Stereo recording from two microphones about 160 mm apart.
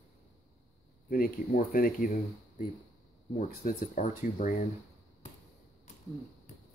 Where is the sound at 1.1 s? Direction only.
60° left (ahead or behind).